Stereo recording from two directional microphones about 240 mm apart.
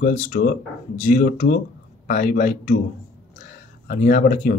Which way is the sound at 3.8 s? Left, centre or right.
Left.